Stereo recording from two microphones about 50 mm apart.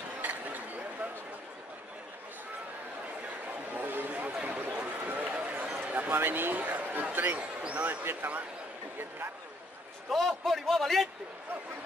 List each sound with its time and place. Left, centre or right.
0.2 s a sound: right
3.7 s a sound: right
5.0 s run: right
5.8 s a man's voice: right
8.0 s speech: right
10.0 s a man's voice: centre